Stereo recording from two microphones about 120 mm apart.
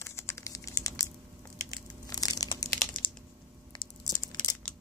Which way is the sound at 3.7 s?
35° left (ahead or behind).